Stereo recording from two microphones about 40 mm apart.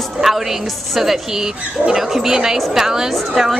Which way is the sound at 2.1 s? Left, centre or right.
Centre.